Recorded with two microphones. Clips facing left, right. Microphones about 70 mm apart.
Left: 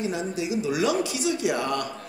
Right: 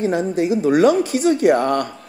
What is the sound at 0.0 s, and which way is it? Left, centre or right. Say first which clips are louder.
Speech: right 9 dB; right.